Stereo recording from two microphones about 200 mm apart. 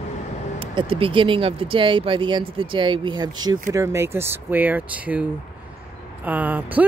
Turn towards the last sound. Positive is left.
turn(degrees=-10)  # may be behind; listen again after turning